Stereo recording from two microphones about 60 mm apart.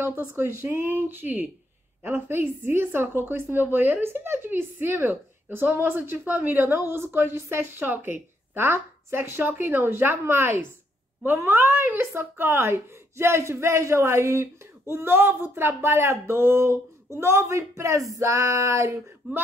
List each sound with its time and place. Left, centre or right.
0.4 s a woman's voice: right
19.2 s a woman's voice: right